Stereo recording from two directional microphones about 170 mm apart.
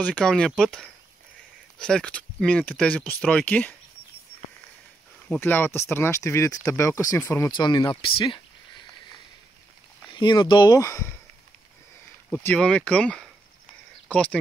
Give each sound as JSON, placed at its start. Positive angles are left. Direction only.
{"t": 0.0, "sound": "speech", "side_deg": 5}
{"t": 5.3, "sound": "speech", "side_deg": 10}
{"t": 7.5, "sound": "speech", "side_deg": 25}
{"t": 10.1, "sound": "speech", "side_deg": 25}
{"t": 12.3, "sound": "speech", "side_deg": 5}